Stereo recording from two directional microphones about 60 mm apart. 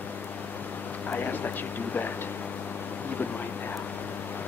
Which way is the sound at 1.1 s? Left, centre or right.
Left.